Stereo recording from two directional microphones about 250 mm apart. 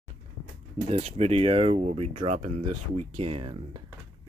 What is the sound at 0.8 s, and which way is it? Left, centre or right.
Speech, right.